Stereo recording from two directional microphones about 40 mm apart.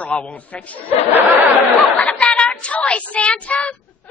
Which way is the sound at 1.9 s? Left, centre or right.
Left.